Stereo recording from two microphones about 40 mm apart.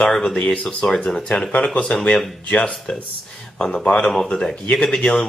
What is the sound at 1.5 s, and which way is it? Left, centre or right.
Speech, left.